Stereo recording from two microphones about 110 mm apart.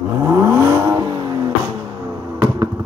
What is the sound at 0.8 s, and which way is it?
Vehicle, 40° right (ahead or behind).